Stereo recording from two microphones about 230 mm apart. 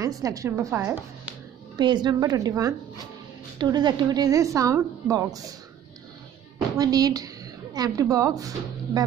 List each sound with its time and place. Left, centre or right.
0.0 s a woman's voice: centre
6.8 s a woman's voice: centre